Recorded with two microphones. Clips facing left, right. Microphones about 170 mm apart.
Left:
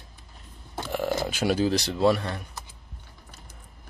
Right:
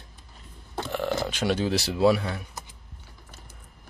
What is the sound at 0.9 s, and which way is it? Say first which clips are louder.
Speech: left 1 dB; 10° left (ahead or behind).